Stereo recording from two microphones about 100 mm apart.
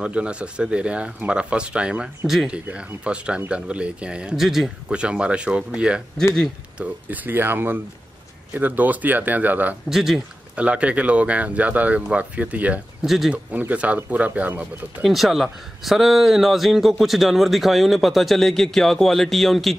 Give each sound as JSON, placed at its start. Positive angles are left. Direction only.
{"t": 0.0, "sound": "speech", "side_deg": -10}
{"t": 9.8, "sound": "speech", "side_deg": -5}
{"t": 13.0, "sound": "speech", "side_deg": 0}
{"t": 13.5, "sound": "speech", "side_deg": -15}
{"t": 15.0, "sound": "speech", "side_deg": 0}